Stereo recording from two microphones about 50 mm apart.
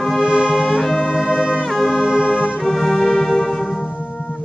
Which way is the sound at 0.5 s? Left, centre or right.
Centre.